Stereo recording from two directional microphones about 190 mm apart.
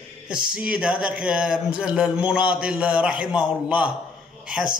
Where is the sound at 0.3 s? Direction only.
5° right (ahead or behind).